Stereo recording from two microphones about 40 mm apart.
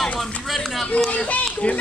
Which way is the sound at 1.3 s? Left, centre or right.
Left.